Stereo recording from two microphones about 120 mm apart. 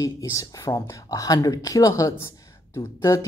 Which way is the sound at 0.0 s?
25° left (ahead or behind).